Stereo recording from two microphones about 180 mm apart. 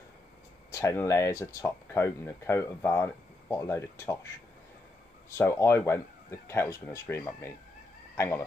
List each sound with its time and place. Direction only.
0.7 s speech: 15° left (ahead or behind)
5.4 s speech: 15° left (ahead or behind)